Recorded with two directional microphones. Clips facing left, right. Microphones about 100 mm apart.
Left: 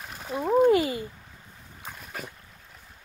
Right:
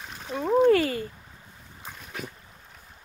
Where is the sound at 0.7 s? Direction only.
20° left (ahead or behind).